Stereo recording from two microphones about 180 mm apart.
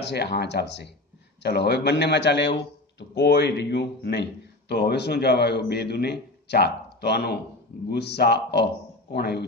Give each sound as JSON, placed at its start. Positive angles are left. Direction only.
{"t": 0.0, "sound": "a man's voice", "side_deg": 65}